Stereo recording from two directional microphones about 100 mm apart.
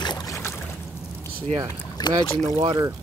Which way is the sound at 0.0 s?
40° left (ahead or behind).